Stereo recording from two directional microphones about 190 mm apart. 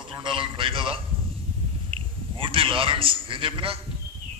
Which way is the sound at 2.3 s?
25° right (ahead or behind).